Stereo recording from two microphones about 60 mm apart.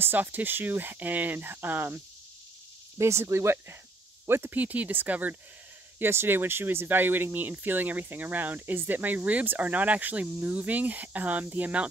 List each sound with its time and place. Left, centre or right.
0.0 s speech: right
3.0 s speech: right
4.6 s speech: right
5.9 s speech: right